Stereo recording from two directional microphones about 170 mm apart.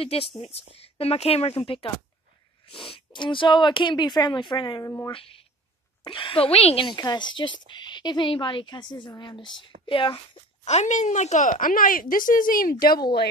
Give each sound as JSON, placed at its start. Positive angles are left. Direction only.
{"t": 0.0, "sound": "a woman's voice", "side_deg": 35}
{"t": 5.1, "sound": "a woman's voice", "side_deg": 35}
{"t": 10.7, "sound": "a woman's voice", "side_deg": 45}